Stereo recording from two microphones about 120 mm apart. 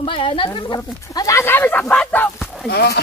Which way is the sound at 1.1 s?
25° left (ahead or behind).